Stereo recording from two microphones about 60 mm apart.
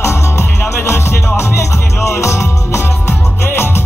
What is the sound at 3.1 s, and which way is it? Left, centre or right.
Music, left.